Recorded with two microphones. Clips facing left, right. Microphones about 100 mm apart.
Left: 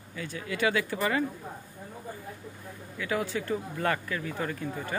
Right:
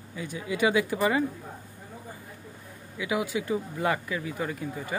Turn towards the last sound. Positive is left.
turn(degrees=-10)  # may be behind; listen again after turning